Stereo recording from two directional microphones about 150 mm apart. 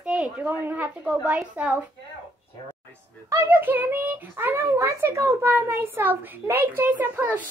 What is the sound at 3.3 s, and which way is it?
A child's voice, 15° right (ahead or behind).